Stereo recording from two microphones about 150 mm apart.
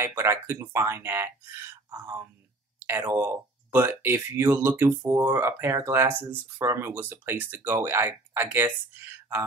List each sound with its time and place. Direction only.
0.0 s speech: 15° right (ahead or behind)